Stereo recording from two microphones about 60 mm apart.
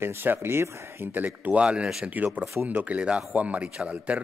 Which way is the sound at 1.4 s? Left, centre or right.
Right.